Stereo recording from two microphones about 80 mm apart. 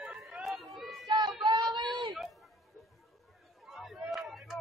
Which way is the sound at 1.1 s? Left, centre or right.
Right.